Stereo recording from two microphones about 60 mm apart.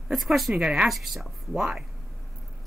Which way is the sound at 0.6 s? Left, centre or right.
Centre.